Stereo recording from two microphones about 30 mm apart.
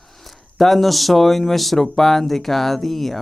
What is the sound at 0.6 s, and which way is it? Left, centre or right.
A man's voice, centre.